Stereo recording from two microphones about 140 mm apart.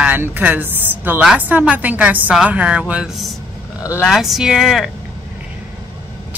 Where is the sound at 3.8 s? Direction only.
20° left (ahead or behind).